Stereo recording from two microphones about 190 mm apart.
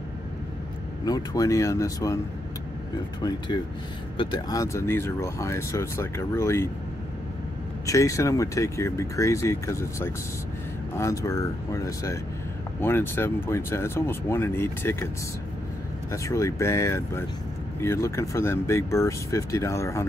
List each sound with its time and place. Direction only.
1.0 s speech: 20° left (ahead or behind)
3.2 s speech: 20° left (ahead or behind)
7.8 s speech: 15° left (ahead or behind)
16.1 s speech: 15° left (ahead or behind)